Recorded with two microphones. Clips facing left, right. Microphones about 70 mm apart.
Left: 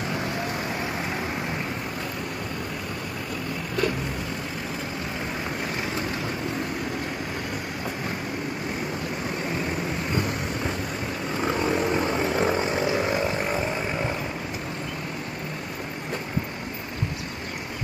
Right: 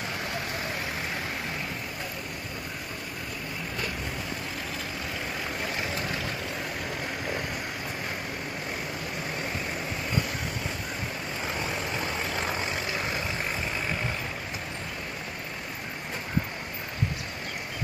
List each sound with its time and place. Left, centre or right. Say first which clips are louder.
12.1 s vehicle: left 7 dB; left